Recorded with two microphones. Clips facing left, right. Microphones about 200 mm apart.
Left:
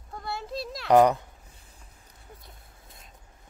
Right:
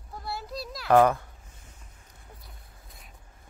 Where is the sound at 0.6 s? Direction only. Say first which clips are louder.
Left 2 dB; centre (ahead or behind).